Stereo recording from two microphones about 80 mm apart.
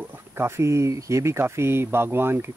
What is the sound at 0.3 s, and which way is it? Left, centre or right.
Speech, right.